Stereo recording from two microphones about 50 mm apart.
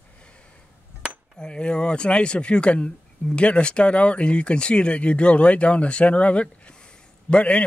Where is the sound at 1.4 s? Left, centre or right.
Centre.